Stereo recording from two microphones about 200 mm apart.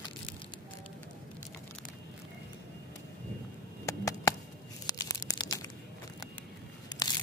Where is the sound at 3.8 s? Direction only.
15° left (ahead or behind).